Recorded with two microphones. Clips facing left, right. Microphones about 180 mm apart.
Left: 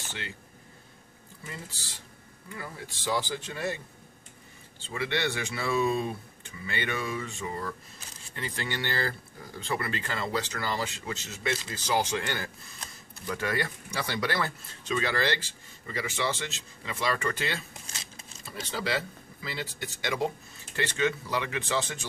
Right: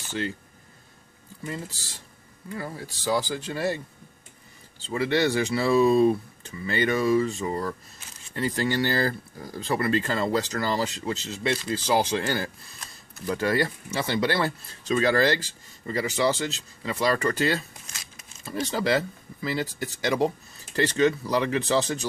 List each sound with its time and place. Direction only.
2.5 s speech: 40° right (ahead or behind)